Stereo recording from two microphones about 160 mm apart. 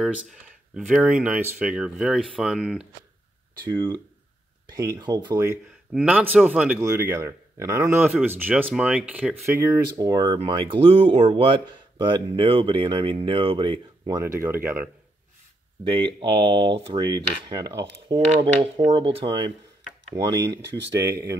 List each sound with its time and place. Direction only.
0.0 s speech: 5° right (ahead or behind)
3.6 s speech: 30° right (ahead or behind)
5.9 s speech: 10° right (ahead or behind); by 11.6 s 35° right (ahead or behind)
12.1 s dishes: 35° right (ahead or behind); by 14.9 s 10° right (ahead or behind)
16.1 s dishes: 30° right (ahead or behind)
20.2 s speech: 45° right (ahead or behind)